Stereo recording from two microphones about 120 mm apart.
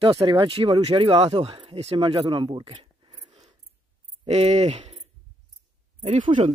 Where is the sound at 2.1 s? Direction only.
40° right (ahead or behind).